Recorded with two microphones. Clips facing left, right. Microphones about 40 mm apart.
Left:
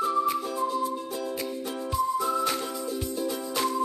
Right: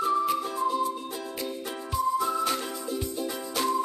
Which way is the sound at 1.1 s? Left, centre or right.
Right.